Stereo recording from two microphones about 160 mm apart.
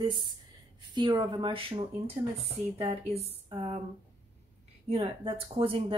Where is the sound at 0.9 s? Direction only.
25° right (ahead or behind).